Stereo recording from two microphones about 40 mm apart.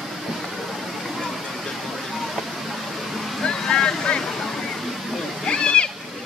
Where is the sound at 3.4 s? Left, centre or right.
Centre.